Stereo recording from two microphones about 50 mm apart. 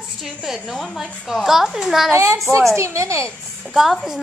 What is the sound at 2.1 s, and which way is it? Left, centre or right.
Speech, right.